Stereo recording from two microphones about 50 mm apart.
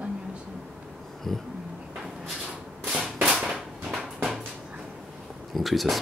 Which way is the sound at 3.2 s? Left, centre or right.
Centre.